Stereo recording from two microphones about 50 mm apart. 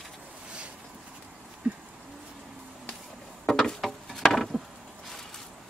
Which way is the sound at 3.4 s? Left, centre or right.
Centre.